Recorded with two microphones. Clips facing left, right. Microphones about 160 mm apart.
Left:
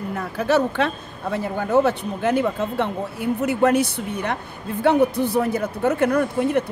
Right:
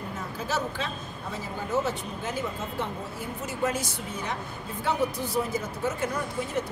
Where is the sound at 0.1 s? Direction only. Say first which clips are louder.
Left 12 dB; 65° left (ahead or behind).